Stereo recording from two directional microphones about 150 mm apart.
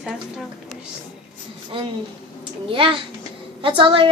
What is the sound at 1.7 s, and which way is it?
A woman's voice, 35° right (ahead or behind).